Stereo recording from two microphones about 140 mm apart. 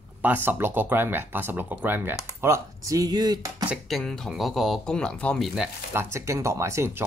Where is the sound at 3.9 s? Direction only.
Centre (ahead or behind).